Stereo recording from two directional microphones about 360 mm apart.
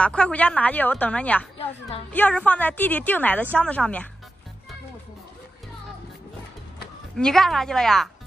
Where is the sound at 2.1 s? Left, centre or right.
Centre.